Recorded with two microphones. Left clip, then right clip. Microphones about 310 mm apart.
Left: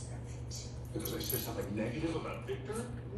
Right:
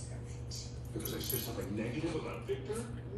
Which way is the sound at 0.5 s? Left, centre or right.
Left.